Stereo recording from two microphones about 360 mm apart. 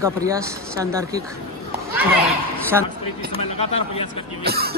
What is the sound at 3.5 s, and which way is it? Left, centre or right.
Speech, centre.